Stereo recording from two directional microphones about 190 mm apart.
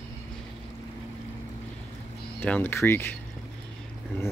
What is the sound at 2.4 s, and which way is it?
Speech, 10° left (ahead or behind).